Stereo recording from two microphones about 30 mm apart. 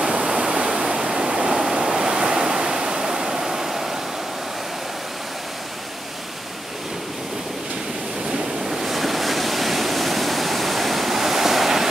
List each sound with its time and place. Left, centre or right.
0.3 s pink noise: right
0.7 s waves: right
8.6 s waves: centre